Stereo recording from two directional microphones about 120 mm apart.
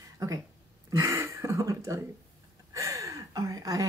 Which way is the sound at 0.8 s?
25° right (ahead or behind).